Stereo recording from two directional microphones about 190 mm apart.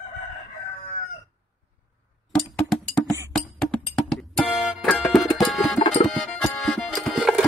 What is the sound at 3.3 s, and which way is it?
Music, 5° left (ahead or behind).